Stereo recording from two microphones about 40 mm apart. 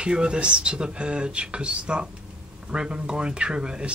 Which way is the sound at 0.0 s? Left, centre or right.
Right.